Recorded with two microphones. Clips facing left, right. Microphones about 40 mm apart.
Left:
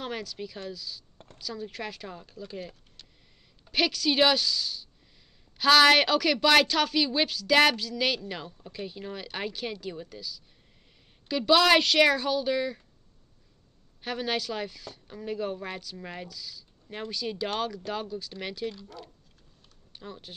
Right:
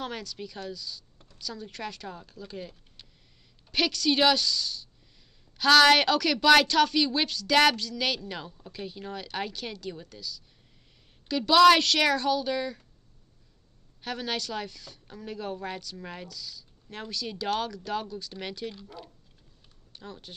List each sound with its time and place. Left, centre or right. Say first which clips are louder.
0.0 s a woman's voice: left 1 dB; centre
1.1 s a sound: left 6 dB; left
1.4 s a woman's voice: left 1 dB; centre
3.7 s a woman's voice: even; centre
14.0 s speech: left 2 dB; centre
18.8 s speech: even; centre
19.9 s speech: left 1 dB; centre